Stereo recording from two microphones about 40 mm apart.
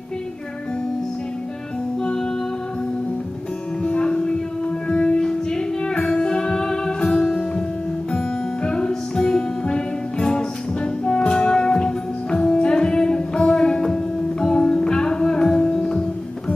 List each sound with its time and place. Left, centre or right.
3.8 s music: left
5.2 s music: centre